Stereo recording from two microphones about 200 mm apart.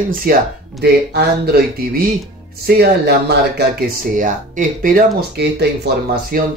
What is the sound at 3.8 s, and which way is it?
Speech, 40° right (ahead or behind).